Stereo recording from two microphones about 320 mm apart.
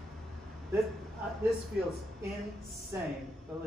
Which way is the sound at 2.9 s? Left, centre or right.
Centre.